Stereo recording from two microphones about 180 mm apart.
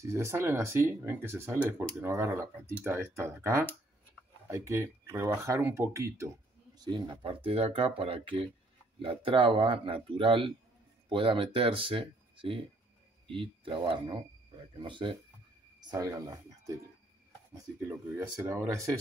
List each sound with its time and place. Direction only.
0.0 s speech: 15° right (ahead or behind)
6.8 s speech: 25° right (ahead or behind)